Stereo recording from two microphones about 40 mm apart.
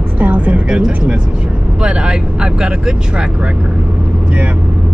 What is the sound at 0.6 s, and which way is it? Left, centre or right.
Speech, right.